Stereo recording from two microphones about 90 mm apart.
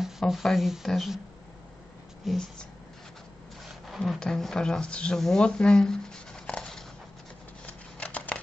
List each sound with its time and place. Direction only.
0.0 s speech: centre (ahead or behind)
2.3 s speech: centre (ahead or behind)
3.8 s speech: centre (ahead or behind)
7.6 s shuffling cards: 15° left (ahead or behind)